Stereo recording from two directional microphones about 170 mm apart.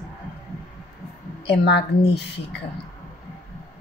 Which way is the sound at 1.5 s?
75° left (ahead or behind).